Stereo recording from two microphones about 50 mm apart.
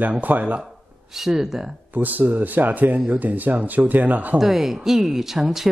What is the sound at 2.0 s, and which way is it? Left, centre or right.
Speech, right.